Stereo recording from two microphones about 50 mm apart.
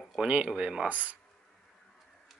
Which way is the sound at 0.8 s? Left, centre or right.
Right.